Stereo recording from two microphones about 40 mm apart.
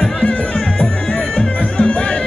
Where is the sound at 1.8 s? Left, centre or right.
Left.